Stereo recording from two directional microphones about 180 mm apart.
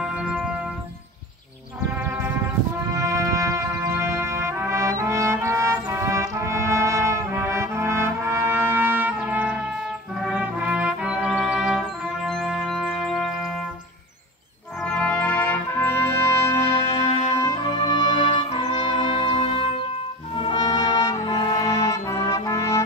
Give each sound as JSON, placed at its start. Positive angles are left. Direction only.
{"t": 0.0, "sound": "music", "side_deg": -5}
{"t": 2.9, "sound": "brass instrument", "side_deg": -15}
{"t": 10.2, "sound": "music", "side_deg": -5}
{"t": 14.8, "sound": "music", "side_deg": 5}
{"t": 16.8, "sound": "music", "side_deg": 35}
{"t": 17.4, "sound": "music", "side_deg": 20}
{"t": 18.3, "sound": "music", "side_deg": 35}